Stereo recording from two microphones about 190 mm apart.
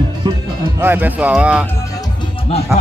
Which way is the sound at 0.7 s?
10° right (ahead or behind).